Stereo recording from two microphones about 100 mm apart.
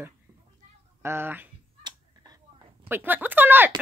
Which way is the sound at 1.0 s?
25° right (ahead or behind).